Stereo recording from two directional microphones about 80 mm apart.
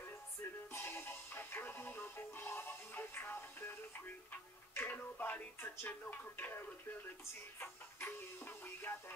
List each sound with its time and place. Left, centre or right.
0.7 s music: left